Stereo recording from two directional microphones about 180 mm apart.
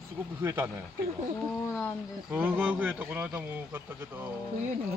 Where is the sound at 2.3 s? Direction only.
10° right (ahead or behind).